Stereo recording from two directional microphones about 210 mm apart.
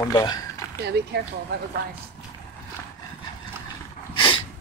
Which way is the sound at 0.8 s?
50° right (ahead or behind).